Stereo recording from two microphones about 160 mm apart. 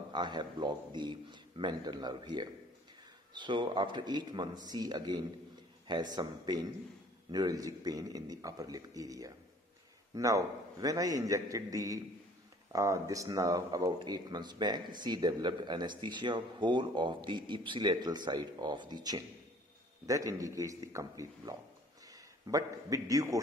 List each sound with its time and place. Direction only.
0.1 s a man's voice: 30° right (ahead or behind)